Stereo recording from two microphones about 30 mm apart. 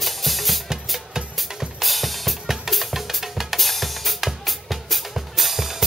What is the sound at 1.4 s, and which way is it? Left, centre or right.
Drum kit, centre.